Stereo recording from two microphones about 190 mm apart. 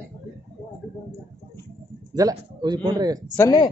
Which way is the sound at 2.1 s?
20° right (ahead or behind).